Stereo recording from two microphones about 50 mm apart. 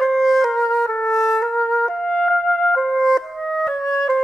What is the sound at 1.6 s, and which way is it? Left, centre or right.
Music, centre.